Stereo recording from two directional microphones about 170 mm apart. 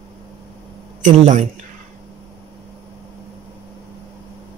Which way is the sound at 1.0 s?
45° right (ahead or behind).